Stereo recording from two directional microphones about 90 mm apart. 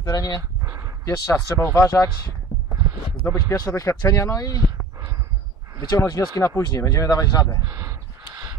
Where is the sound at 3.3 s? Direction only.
40° left (ahead or behind).